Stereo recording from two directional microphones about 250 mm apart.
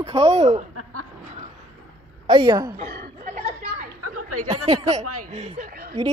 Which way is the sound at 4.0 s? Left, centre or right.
Right.